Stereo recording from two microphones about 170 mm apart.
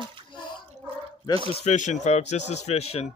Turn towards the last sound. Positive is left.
turn(degrees=40)  # may be behind; listen again after turning